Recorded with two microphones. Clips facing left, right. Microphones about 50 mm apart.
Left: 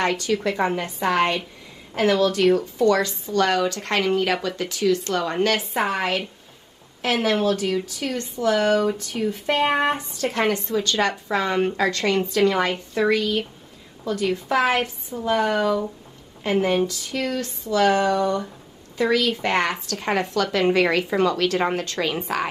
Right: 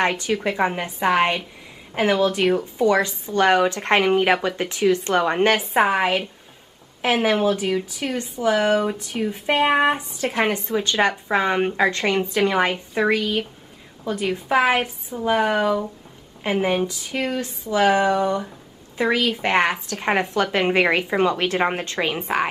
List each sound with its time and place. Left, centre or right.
0.0 s speech: right